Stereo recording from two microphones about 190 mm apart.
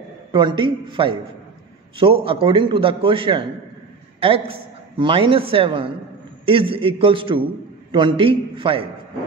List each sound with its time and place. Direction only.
0.3 s a woman's voice: 25° right (ahead or behind)